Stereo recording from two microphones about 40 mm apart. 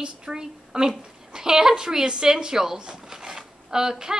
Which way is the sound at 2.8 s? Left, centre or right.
Centre.